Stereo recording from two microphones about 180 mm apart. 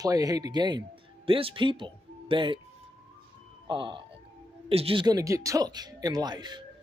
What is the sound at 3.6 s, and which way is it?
Speech, 25° right (ahead or behind).